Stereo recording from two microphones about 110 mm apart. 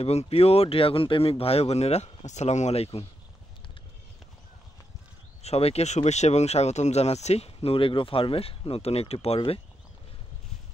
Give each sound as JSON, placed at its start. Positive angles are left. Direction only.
{"t": 0.0, "sound": "speech", "side_deg": 70}
{"t": 5.4, "sound": "speech", "side_deg": 70}